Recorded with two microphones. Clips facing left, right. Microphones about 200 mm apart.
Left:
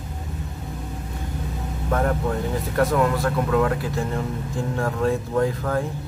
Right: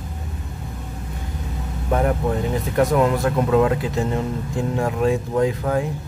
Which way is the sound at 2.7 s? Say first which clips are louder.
Right 3 dB; 20° right (ahead or behind).